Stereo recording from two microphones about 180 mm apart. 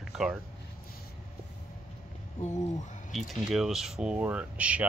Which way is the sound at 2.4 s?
40° left (ahead or behind).